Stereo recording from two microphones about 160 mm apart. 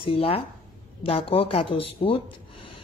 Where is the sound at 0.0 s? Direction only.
35° left (ahead or behind).